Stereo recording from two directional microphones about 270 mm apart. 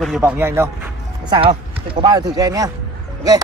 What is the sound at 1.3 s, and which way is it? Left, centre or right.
Speech, centre.